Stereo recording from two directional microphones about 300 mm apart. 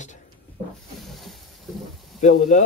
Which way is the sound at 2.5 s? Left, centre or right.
Left.